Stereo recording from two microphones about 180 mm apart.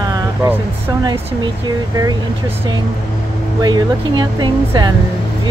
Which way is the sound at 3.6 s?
25° right (ahead or behind).